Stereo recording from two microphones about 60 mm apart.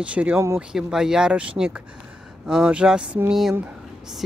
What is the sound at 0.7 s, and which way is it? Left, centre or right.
Speech, centre.